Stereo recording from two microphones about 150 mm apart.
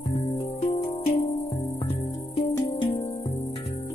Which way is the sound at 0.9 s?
40° left (ahead or behind).